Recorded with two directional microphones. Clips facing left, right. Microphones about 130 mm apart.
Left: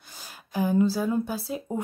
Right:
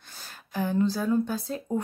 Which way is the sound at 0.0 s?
10° left (ahead or behind).